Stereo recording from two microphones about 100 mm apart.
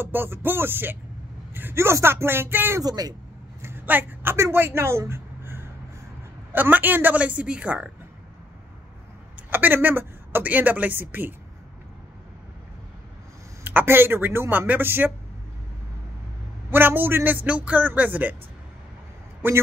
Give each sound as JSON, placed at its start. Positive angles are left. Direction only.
{"t": 0.0, "sound": "speech", "side_deg": -20}
{"t": 2.8, "sound": "speech", "side_deg": -40}
{"t": 3.6, "sound": "a woman's voice", "side_deg": -20}
{"t": 9.5, "sound": "speech", "side_deg": -20}
{"t": 13.7, "sound": "speech", "side_deg": -20}
{"t": 16.7, "sound": "speech", "side_deg": -20}